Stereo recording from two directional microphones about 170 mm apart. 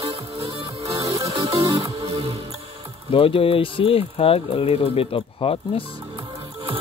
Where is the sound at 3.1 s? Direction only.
35° left (ahead or behind).